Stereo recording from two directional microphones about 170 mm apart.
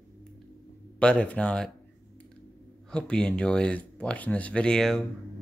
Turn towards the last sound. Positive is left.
turn(degrees=5)  # may be behind; listen again after turning